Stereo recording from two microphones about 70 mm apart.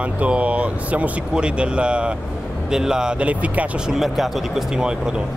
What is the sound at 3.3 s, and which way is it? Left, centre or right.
Speech, right.